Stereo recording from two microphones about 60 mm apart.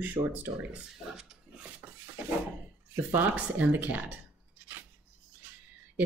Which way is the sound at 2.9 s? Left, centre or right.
Right.